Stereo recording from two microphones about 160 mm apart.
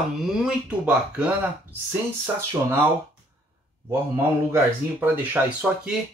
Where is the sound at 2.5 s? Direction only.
20° right (ahead or behind).